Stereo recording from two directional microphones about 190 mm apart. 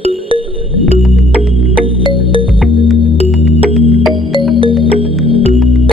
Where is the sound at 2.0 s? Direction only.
25° right (ahead or behind).